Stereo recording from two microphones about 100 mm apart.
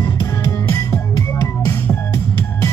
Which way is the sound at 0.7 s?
30° left (ahead or behind).